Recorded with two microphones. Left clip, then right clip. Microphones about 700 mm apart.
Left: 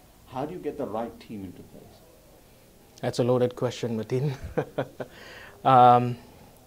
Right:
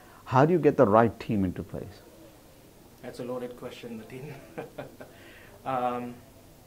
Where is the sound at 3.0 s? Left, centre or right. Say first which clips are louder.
Left 12 dB; left.